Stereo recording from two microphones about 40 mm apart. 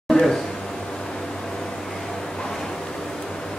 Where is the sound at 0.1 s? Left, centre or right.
Centre.